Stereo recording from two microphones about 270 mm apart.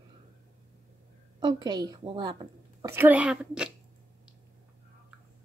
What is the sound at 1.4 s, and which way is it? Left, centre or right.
A woman's voice, centre.